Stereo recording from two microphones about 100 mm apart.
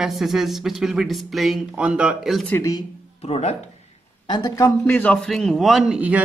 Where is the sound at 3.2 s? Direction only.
90° left.